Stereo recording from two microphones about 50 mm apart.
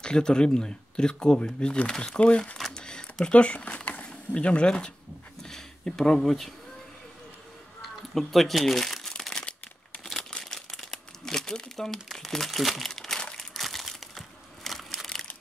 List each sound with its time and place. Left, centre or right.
0.0 s speech: centre
2.5 s a sound: centre
5.4 s speech: centre
7.8 s crumpling: centre
9.3 s crumpling: centre
10.9 s speech: centre
13.4 s a sound: centre